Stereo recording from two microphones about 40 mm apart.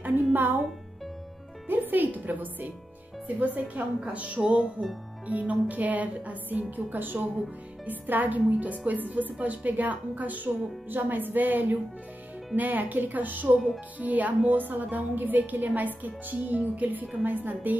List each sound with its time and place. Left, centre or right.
0.0 s music: right
1.7 s a woman's voice: right
5.5 s speech: right
6.9 s a woman's voice: right